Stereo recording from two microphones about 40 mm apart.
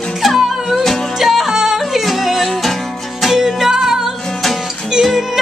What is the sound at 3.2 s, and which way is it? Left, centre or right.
Music, centre.